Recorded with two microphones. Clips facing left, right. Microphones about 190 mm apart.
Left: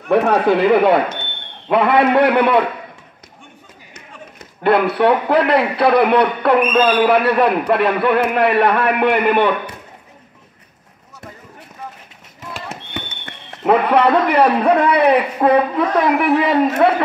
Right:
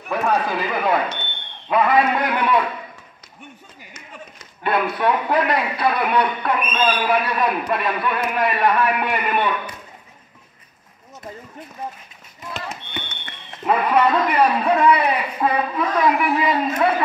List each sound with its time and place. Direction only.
0.1 s a man's voice: 65° left (ahead or behind)
3.9 s a man's voice: 60° left (ahead or behind)
13.7 s a man's voice: 65° left (ahead or behind)